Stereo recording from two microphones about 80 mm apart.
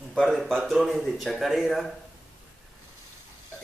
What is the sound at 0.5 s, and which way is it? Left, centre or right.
Speech, centre.